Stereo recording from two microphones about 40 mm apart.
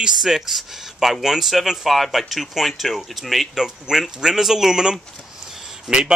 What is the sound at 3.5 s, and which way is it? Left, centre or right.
Speech, centre.